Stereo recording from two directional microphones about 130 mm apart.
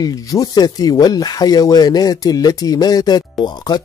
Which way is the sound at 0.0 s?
25° left (ahead or behind).